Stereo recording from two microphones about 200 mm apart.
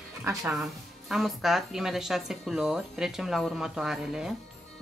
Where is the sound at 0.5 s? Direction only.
Centre (ahead or behind).